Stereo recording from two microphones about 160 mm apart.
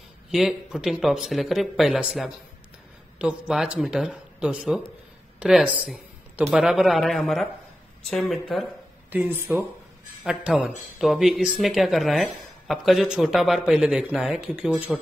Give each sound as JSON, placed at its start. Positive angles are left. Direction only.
{"t": 0.3, "sound": "speech", "side_deg": 0}
{"t": 9.1, "sound": "speech", "side_deg": -10}